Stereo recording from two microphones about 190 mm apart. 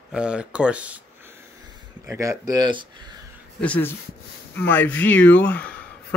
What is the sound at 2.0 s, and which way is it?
Speech, 15° right (ahead or behind).